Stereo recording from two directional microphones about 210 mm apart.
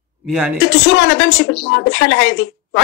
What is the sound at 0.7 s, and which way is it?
A woman's voice, 55° left (ahead or behind).